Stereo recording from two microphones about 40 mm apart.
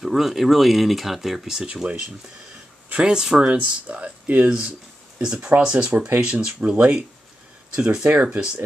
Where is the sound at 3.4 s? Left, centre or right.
Right.